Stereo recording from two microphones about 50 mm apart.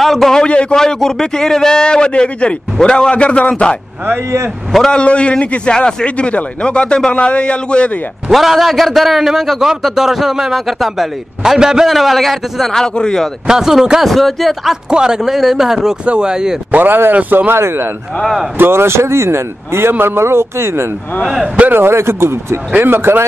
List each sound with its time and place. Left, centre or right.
0.0 s a man's voice: centre
0.4 s a man's voice: left
0.7 s a man's voice: centre
4.9 s a man's voice: left
8.3 s a man's voice: centre
11.9 s a man's voice: centre
12.7 s a man's voice: centre
13.5 s speech: centre
14.0 s a man's voice: centre
14.9 s speech: centre
16.7 s speech: right
17.2 s speech: right
17.5 s speech: right
22.8 s speech: right